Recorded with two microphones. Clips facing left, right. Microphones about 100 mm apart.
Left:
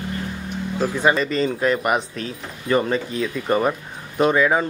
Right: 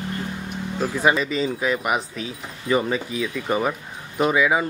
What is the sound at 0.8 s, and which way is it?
Speech, 5° right (ahead or behind).